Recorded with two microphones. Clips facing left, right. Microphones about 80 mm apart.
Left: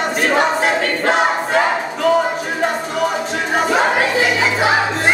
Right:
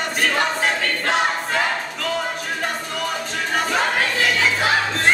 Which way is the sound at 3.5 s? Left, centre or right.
Centre.